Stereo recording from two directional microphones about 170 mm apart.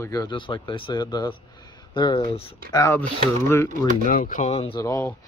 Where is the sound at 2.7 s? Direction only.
20° left (ahead or behind).